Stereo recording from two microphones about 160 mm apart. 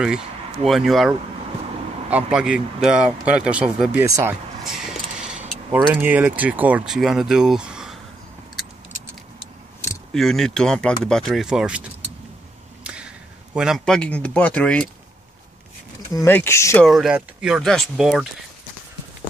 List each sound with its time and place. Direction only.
0.7 s speech: centre (ahead or behind); by 4.4 s 15° right (ahead or behind)
4.6 s speech: 5° right (ahead or behind)
10.1 s speech: centre (ahead or behind)
12.8 s a sound: 5° right (ahead or behind)
13.6 s speech: centre (ahead or behind)
16.1 s speech: 15° left (ahead or behind)
16.8 s speech: centre (ahead or behind)